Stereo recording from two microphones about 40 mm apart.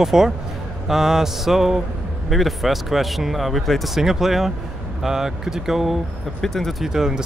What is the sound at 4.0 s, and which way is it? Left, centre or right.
Speech, centre.